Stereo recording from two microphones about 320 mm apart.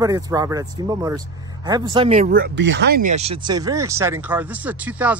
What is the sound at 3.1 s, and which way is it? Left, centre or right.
Speech, centre.